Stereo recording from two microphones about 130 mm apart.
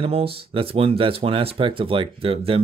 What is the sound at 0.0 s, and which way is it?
Speech, 45° right (ahead or behind).